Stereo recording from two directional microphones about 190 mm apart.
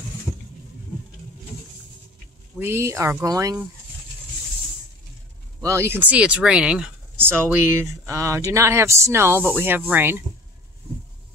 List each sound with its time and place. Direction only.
0.3 s a sound: 20° left (ahead or behind)
2.6 s speech: 15° right (ahead or behind)
5.6 s speech: 15° right (ahead or behind)